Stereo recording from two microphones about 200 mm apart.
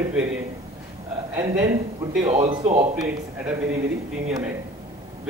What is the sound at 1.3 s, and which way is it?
A man's voice, 10° right (ahead or behind).